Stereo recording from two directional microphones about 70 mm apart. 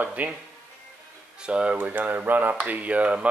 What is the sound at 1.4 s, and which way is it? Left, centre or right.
Speech, centre.